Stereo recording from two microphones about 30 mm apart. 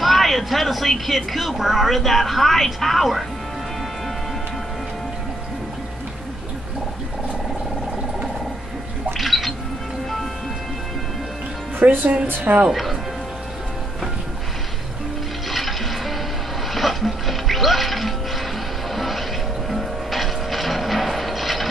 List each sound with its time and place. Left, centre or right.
0.0 s speech: centre
9.2 s music: centre
11.8 s speech: right
12.5 s speech: right
16.7 s music: centre
18.9 s vehicle: centre
19.7 s music: centre